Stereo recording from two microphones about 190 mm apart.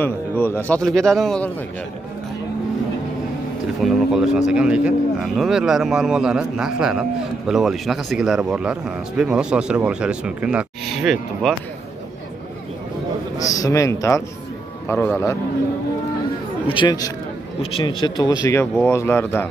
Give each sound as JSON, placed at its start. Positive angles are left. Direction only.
{"t": 0.0, "sound": "a man's voice", "side_deg": 10}
{"t": 3.8, "sound": "speech", "side_deg": 0}
{"t": 13.4, "sound": "a man's voice", "side_deg": 15}
{"t": 16.6, "sound": "speech", "side_deg": 25}